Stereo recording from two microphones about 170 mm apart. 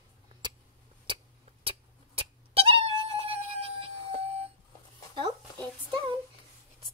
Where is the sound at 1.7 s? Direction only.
35° right (ahead or behind).